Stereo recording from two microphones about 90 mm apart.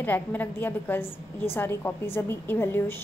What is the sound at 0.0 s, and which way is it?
A woman's voice, 20° left (ahead or behind).